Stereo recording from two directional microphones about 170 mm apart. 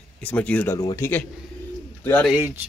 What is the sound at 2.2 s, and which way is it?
Speech, 10° right (ahead or behind).